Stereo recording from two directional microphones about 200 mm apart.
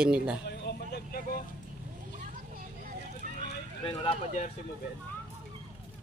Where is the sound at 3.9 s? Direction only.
35° left (ahead or behind).